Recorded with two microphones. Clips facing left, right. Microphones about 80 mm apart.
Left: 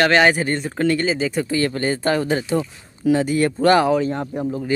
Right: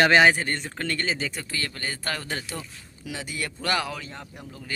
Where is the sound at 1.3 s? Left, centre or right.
Left.